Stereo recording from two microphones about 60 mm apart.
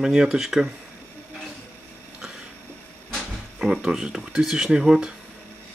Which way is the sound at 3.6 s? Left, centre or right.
Centre.